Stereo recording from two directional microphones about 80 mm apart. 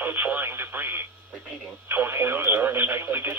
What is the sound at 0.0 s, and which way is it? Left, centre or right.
Speech, right.